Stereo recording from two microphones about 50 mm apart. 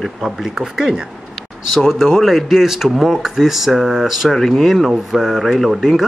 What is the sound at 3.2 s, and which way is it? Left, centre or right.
Speech, centre.